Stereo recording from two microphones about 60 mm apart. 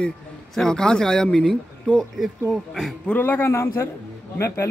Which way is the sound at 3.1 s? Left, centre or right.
Left.